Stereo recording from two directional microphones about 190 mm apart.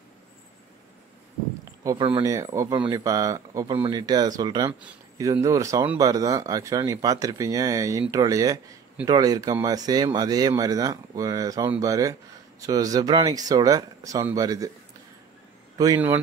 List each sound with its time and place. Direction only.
1.8 s speech: 20° right (ahead or behind)
15.8 s speech: 15° right (ahead or behind)